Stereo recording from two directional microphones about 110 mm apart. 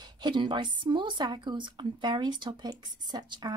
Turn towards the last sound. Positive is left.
turn(degrees=-40)  # may be behind; listen again after turning